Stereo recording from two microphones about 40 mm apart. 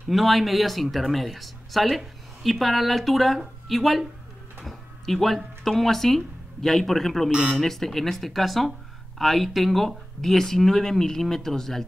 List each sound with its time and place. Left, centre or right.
0.1 s a woman's voice: centre
7.2 s speech: right
7.5 s a woman's voice: centre